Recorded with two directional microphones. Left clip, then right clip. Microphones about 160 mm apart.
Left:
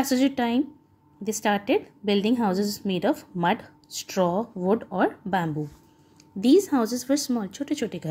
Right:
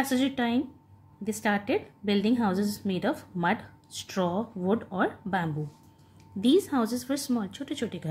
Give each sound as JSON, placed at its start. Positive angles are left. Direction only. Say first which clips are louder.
{"t": 0.0, "sound": "a woman's voice", "louder": "left 4 dB", "side_deg": 35}